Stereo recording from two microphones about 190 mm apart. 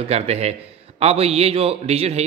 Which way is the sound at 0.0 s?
35° right (ahead or behind).